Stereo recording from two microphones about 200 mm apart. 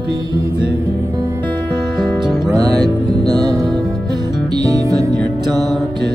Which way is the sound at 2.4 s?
20° right (ahead or behind).